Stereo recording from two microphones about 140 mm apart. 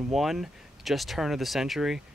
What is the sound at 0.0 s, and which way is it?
Speech, centre (ahead or behind).